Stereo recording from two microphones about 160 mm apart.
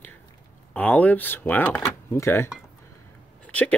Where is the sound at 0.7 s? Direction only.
10° left (ahead or behind).